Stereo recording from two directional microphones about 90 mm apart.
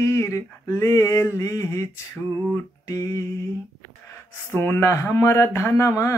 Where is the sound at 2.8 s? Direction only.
40° left (ahead or behind).